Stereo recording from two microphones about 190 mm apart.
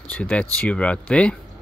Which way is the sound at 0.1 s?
5° left (ahead or behind).